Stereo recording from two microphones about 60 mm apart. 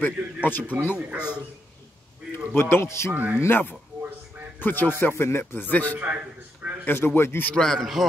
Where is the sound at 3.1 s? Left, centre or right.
Right.